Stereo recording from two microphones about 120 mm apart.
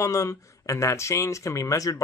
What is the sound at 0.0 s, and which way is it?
Speech, 25° left (ahead or behind).